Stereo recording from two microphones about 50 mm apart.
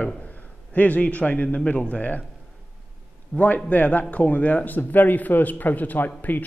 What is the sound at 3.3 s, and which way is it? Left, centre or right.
A man's voice, left.